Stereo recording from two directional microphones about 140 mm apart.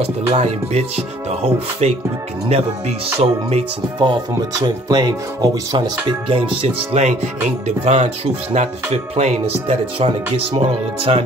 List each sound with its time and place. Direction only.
0.0 s speech: 45° right (ahead or behind)
4.0 s speech: 30° right (ahead or behind)